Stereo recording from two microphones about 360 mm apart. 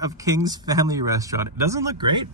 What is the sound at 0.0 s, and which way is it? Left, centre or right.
Speech, centre.